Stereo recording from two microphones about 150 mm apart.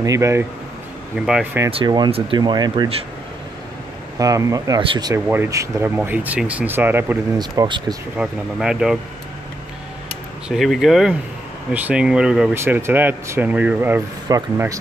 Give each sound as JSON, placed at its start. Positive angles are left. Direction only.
{"t": 0.0, "sound": "speech", "side_deg": -20}
{"t": 1.2, "sound": "speech", "side_deg": -5}
{"t": 2.0, "sound": "speech", "side_deg": -35}
{"t": 4.2, "sound": "speech", "side_deg": -20}
{"t": 5.1, "sound": "speech", "side_deg": -15}
{"t": 7.3, "sound": "speech", "side_deg": -30}
{"t": 8.2, "sound": "speech", "side_deg": -5}
{"t": 10.5, "sound": "speech", "side_deg": 0}